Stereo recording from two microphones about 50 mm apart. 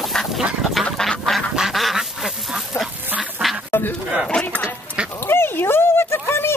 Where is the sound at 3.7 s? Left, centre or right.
Left.